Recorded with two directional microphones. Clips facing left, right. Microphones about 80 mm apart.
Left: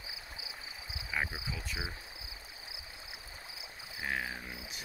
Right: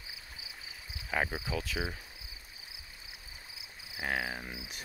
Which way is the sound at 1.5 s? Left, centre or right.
Right.